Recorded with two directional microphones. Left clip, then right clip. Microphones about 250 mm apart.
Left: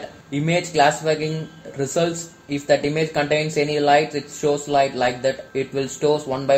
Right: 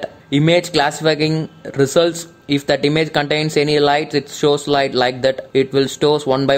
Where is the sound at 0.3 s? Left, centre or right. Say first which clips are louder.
Right 8 dB; right.